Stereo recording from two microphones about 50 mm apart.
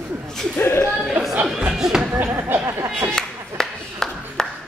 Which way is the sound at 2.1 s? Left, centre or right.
Right.